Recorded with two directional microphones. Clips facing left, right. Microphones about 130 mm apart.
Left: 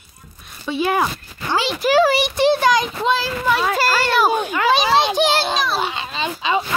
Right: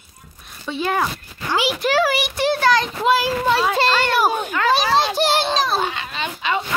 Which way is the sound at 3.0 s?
10° right (ahead or behind).